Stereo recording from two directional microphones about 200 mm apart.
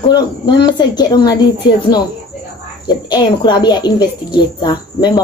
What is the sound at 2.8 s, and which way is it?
Speech, 20° left (ahead or behind).